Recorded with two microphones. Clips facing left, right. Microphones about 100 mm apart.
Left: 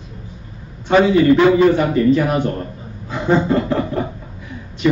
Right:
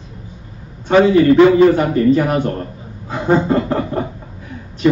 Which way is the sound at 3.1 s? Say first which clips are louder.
Right 1 dB; 40° right (ahead or behind).